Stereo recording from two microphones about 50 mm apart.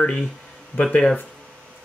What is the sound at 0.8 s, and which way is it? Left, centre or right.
Speech, left.